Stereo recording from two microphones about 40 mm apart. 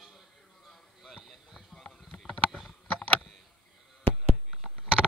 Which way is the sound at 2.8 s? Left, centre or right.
Left.